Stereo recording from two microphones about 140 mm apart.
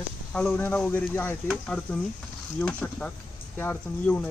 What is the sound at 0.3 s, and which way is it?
Speech, 5° left (ahead or behind).